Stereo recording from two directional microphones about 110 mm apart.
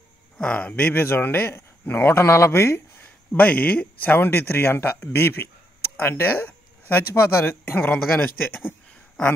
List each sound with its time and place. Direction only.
0.4 s speech: 10° left (ahead or behind)